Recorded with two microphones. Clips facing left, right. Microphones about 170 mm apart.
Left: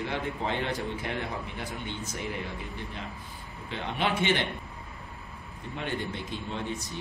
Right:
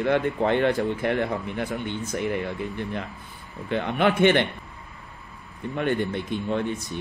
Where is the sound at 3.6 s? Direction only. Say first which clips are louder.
Right 8 dB; 55° right (ahead or behind).